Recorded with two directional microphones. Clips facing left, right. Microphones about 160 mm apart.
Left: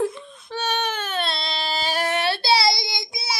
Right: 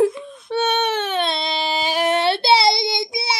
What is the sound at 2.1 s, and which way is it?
Child singing, 25° right (ahead or behind).